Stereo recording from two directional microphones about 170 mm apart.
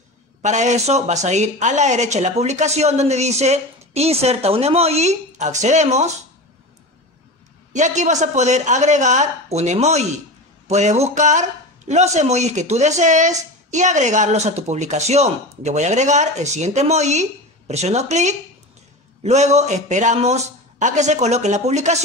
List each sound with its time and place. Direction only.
0.4 s speech: 45° right (ahead or behind)
7.7 s speech: 45° right (ahead or behind)